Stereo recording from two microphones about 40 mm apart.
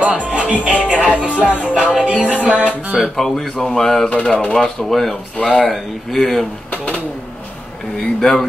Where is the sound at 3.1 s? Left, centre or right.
Centre.